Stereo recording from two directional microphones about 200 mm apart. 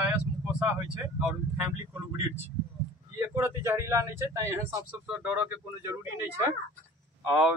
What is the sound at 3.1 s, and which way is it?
Speech, 15° right (ahead or behind).